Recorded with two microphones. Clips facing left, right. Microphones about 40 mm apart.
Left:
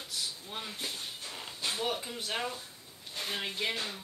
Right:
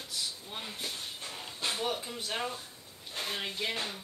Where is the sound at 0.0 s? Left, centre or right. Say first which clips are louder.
Even; centre.